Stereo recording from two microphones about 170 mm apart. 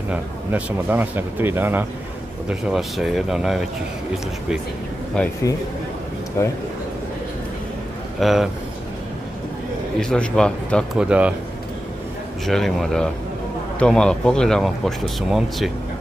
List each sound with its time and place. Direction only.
0.1 s speech: 10° right (ahead or behind)
6.4 s a man's voice: 15° left (ahead or behind)
8.2 s speech: centre (ahead or behind)
9.9 s speech: 5° left (ahead or behind)
11.1 s speech: 10° right (ahead or behind)
12.4 s speech: centre (ahead or behind)